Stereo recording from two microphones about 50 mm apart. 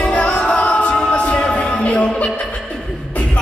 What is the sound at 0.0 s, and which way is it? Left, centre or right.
A capella, left.